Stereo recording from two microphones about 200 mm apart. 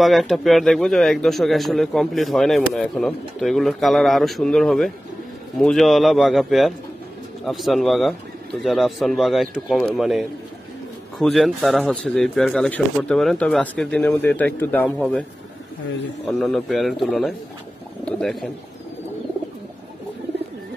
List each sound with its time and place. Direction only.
0.0 s speech: centre (ahead or behind)
16.3 s speech: centre (ahead or behind)